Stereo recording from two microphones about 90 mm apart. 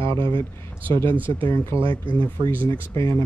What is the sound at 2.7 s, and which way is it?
Speech, 35° left (ahead or behind).